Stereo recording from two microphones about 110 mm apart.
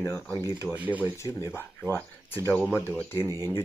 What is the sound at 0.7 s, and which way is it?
Speech, 15° right (ahead or behind).